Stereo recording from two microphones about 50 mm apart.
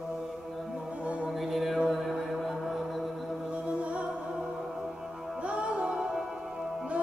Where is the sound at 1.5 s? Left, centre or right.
Centre.